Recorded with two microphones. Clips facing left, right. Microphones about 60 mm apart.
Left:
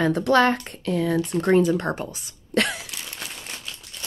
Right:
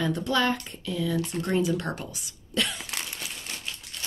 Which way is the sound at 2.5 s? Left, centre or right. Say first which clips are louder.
Left 6 dB; left.